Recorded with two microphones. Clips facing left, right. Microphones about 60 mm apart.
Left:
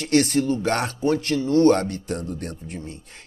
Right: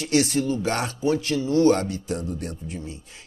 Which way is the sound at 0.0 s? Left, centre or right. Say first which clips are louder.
Left 2 dB; left.